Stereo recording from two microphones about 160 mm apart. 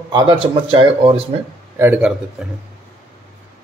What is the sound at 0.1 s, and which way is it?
Speech, 30° right (ahead or behind).